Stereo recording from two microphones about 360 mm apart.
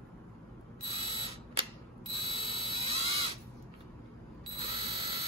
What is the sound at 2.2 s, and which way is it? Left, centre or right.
Fire alarm, centre.